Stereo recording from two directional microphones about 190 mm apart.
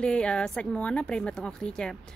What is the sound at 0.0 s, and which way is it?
Speech, 5° left (ahead or behind).